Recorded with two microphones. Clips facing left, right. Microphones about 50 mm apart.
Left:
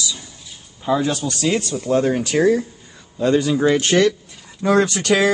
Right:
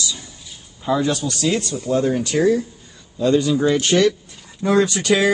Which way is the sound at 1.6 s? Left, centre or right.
Left.